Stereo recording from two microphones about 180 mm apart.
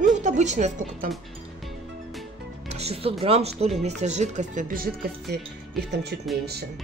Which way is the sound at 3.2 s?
35° right (ahead or behind).